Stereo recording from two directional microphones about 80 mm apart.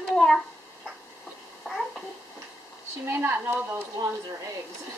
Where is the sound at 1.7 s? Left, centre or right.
Centre.